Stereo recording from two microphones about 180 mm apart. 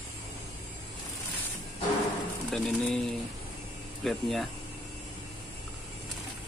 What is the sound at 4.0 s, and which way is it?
Speech, centre (ahead or behind).